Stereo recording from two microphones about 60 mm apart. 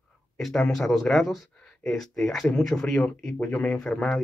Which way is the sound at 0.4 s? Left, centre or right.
Centre.